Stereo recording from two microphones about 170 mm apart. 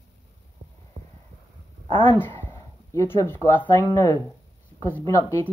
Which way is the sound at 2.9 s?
20° left (ahead or behind).